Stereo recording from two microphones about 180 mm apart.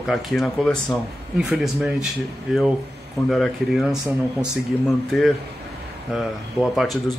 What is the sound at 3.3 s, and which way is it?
Speech, centre (ahead or behind).